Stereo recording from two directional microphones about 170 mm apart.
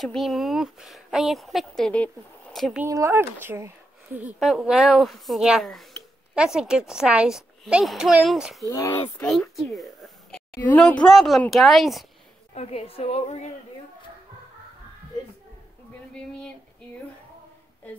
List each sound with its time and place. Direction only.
0.0 s speech: centre (ahead or behind)
2.8 s speech: 15° right (ahead or behind); by 8.6 s centre (ahead or behind)
8.6 s speech: 15° left (ahead or behind)
9.2 s speech: 5° left (ahead or behind)
12.5 s a woman's voice: 35° left (ahead or behind)
16.1 s speech: 5° left (ahead or behind)